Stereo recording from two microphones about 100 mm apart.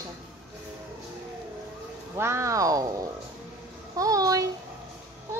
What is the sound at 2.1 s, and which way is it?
Speech, 25° right (ahead or behind).